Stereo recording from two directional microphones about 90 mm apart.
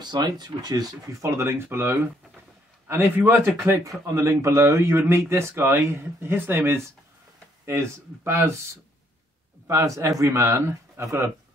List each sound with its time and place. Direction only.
0.0 s a man's voice: 50° right (ahead or behind); by 8.5 s 25° right (ahead or behind)
9.7 s speech: 35° right (ahead or behind)